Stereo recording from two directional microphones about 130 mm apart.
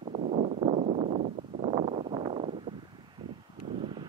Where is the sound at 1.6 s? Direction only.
55° right (ahead or behind).